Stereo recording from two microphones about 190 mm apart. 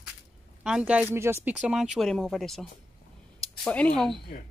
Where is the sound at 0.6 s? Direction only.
5° right (ahead or behind).